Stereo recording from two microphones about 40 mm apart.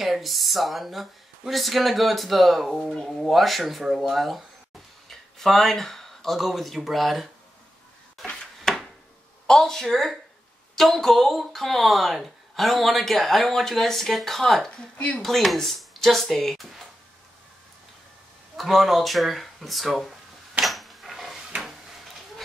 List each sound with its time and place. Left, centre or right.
0.0 s speech: centre
2.8 s a woman's voice: centre
3.2 s speech: centre
8.5 s a sound: centre
9.5 s a woman's voice: centre
14.7 s speech: left
15.1 s speech: centre
18.6 s speech: centre
20.6 s a sound: centre